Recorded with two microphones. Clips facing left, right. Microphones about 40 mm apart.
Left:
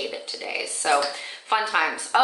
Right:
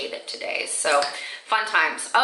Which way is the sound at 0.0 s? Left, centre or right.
Centre.